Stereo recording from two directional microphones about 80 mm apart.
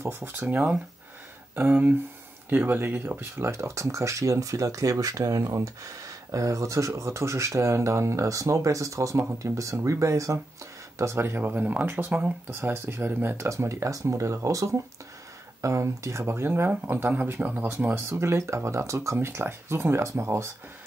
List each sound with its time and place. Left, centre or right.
0.0 s speech: right
12.5 s speech: right